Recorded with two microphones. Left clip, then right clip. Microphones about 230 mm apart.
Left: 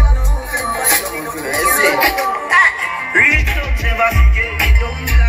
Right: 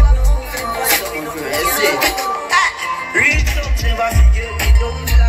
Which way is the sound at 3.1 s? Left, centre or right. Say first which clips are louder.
Left 3 dB; right.